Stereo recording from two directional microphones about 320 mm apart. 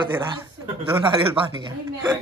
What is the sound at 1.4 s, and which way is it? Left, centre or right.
Speech, centre.